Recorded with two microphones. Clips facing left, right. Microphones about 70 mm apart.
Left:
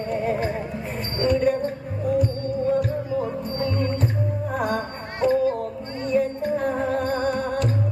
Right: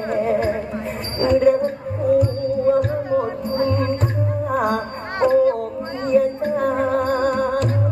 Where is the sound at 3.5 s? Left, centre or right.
Right.